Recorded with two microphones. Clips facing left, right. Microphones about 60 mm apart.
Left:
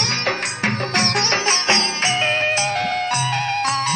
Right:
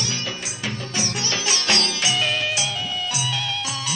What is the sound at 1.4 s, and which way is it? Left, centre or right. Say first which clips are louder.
Music: left 4 dB; left.